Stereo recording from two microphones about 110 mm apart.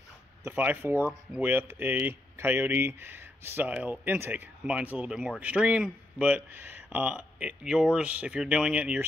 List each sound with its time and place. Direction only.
0.4 s speech: 20° right (ahead or behind)